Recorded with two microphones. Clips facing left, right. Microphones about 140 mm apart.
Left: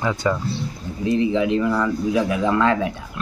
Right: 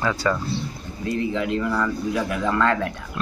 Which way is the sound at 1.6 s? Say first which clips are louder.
Left 3 dB; 10° left (ahead or behind).